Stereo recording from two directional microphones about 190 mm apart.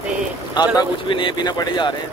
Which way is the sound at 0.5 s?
20° left (ahead or behind).